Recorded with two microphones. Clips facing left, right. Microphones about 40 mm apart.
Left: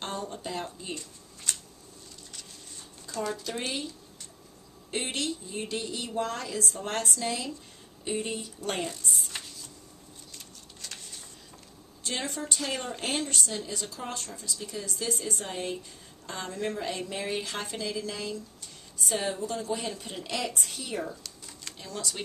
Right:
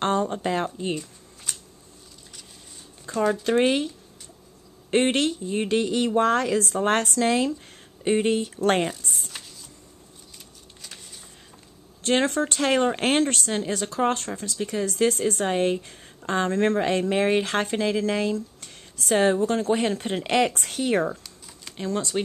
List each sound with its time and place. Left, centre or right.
0.0 s speech: right
0.9 s a sound: centre
3.1 s speech: right
3.4 s speech: right
4.9 s speech: right
12.0 s speech: right
21.7 s speech: right